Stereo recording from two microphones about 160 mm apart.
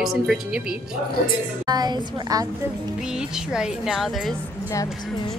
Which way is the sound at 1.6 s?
25° right (ahead or behind).